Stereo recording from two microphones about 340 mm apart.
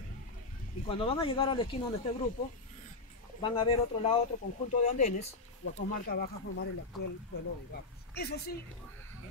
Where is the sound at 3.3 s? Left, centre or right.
Centre.